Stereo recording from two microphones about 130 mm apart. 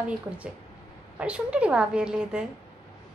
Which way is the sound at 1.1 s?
10° right (ahead or behind).